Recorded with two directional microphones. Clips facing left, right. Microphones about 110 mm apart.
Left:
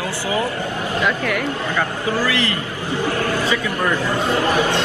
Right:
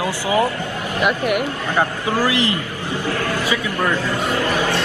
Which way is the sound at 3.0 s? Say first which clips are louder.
Left 2 dB; 25° left (ahead or behind).